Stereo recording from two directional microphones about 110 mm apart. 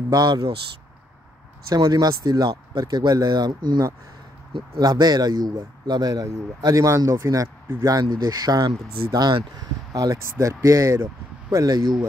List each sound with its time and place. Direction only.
0.1 s speech: 40° right (ahead or behind)
1.7 s speech: 35° right (ahead or behind)